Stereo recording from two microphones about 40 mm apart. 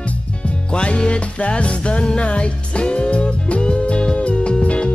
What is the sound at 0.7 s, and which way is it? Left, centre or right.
Music, left.